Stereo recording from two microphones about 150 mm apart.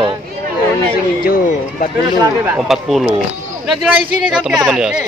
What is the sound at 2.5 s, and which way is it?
Speech, centre (ahead or behind).